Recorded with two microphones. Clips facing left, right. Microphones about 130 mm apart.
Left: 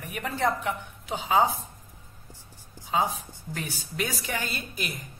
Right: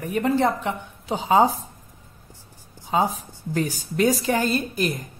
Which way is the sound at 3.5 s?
40° right (ahead or behind).